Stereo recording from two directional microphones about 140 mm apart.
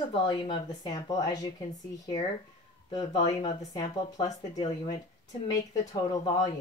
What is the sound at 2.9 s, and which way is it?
Speech, 35° left (ahead or behind).